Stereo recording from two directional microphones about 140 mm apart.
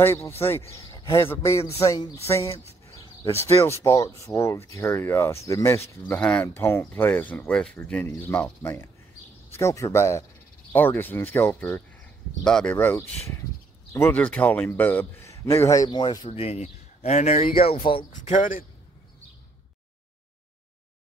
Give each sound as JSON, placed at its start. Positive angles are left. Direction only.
{"t": 0.0, "sound": "speech", "side_deg": 20}
{"t": 0.8, "sound": "a sound", "side_deg": 25}
{"t": 1.3, "sound": "speech", "side_deg": 20}
{"t": 12.7, "sound": "speech", "side_deg": 15}
{"t": 16.3, "sound": "speech", "side_deg": 45}
{"t": 17.6, "sound": "speech", "side_deg": 40}
{"t": 18.3, "sound": "speech", "side_deg": 70}